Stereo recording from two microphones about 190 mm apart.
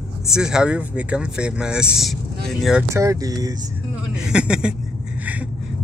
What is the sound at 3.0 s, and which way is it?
Speech, 20° right (ahead or behind).